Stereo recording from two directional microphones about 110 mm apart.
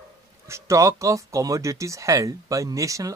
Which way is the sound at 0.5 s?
25° right (ahead or behind).